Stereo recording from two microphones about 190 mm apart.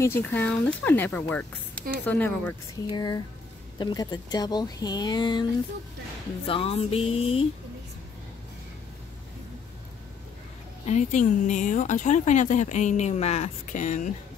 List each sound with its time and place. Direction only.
0.0 s speech: 10° left (ahead or behind)
2.9 s speech: 20° left (ahead or behind)
10.9 s speech: 35° left (ahead or behind)